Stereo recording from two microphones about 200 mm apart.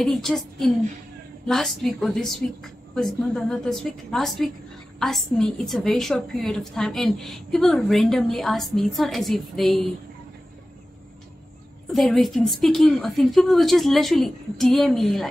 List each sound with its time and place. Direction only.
0.0 s a woman's voice: centre (ahead or behind)
11.9 s a woman's voice: centre (ahead or behind)